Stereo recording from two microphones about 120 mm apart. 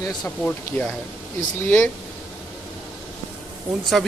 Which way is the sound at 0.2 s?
5° left (ahead or behind).